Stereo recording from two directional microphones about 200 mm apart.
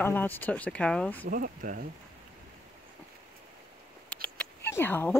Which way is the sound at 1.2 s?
45° right (ahead or behind).